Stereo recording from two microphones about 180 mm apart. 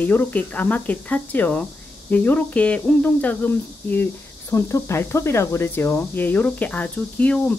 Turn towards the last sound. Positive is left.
turn(degrees=5)  # may be behind; listen again after turning